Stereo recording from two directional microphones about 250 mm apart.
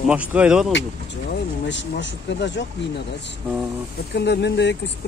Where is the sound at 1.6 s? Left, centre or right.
Left.